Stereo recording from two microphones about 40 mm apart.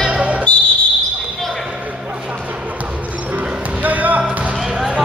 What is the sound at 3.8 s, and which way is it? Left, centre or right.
Basketball bounce, right.